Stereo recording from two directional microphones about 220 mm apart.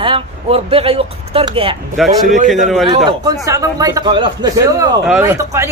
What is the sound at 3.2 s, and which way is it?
Speech, 15° right (ahead or behind).